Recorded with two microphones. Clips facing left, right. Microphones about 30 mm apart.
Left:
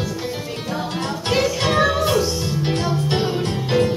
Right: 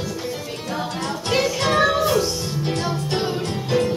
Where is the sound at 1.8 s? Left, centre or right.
Centre.